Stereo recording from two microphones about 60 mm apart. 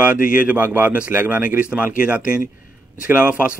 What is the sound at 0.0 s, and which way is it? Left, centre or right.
Speech, right.